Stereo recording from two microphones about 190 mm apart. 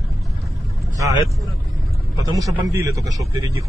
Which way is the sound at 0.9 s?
15° right (ahead or behind).